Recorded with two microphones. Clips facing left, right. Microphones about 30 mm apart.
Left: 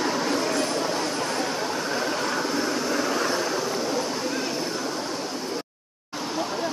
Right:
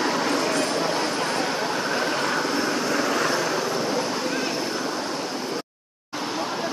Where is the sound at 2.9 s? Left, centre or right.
Right.